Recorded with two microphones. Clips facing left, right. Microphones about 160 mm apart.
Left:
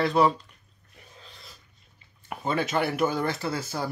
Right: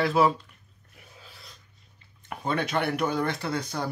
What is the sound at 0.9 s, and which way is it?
Filing, 5° right (ahead or behind).